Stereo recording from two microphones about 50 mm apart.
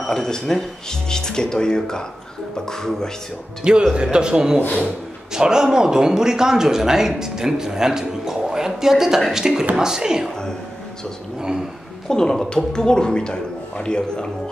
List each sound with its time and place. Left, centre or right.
0.0 s a man's voice: centre
3.9 s speech: centre
4.6 s speech: left
5.3 s speech: centre
12.1 s a man's voice: centre